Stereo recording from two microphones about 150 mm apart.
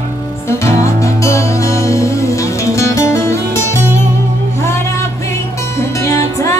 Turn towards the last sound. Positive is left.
turn(degrees=20)  # may be behind; listen again after turning